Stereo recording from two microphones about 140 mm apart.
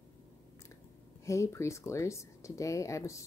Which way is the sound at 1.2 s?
20° left (ahead or behind).